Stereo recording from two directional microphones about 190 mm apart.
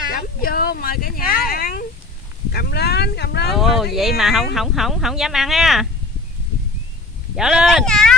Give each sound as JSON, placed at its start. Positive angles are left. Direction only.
{"t": 0.1, "sound": "speech", "side_deg": 50}
{"t": 3.5, "sound": "speech", "side_deg": 0}
{"t": 7.3, "sound": "speech", "side_deg": 0}